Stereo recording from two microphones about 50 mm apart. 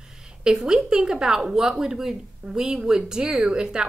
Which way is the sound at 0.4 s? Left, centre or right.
Centre.